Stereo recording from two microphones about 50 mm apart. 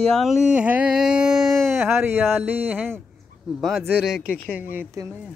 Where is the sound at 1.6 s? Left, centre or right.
Right.